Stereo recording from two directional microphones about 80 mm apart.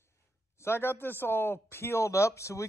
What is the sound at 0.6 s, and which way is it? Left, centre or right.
Speech, left.